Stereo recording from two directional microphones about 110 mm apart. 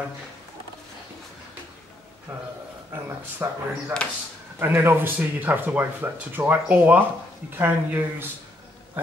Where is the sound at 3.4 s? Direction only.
20° right (ahead or behind).